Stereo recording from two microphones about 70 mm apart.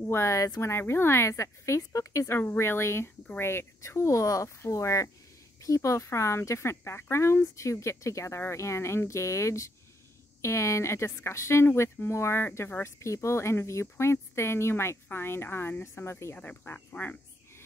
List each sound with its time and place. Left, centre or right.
0.0 s speech: left
13.0 s speech: left
16.9 s speech: centre